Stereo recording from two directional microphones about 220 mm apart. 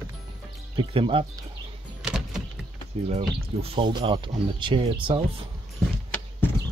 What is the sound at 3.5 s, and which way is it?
A man's voice, 25° right (ahead or behind).